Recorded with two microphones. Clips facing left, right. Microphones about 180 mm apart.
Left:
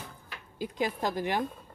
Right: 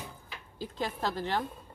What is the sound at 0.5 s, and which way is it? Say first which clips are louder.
Speech: left 4 dB; 15° left (ahead or behind).